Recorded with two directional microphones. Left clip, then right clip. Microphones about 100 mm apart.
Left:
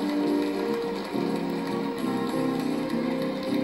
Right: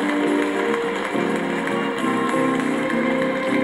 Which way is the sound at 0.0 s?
15° right (ahead or behind).